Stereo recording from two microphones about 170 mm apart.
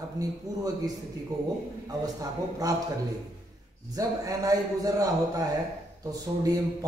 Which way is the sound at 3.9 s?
20° right (ahead or behind).